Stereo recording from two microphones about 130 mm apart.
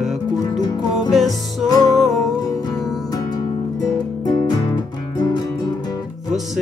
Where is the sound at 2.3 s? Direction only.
30° left (ahead or behind).